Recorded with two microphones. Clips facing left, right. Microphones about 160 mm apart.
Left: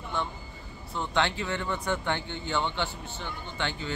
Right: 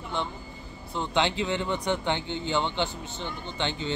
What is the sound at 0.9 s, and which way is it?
Speech, 20° right (ahead or behind).